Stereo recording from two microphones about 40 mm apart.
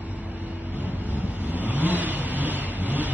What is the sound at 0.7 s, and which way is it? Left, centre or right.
Vehicle, right.